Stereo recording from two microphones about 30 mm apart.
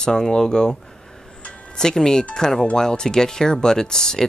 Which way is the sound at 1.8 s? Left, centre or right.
Centre.